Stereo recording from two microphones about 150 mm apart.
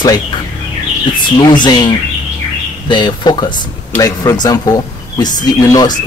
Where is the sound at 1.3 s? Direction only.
30° left (ahead or behind).